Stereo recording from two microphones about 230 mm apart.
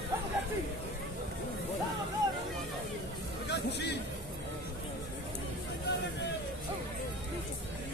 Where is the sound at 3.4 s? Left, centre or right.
Left.